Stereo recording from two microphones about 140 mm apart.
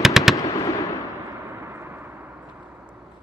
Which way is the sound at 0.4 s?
25° left (ahead or behind).